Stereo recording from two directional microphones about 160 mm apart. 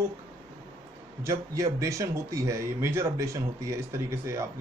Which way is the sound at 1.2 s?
20° right (ahead or behind).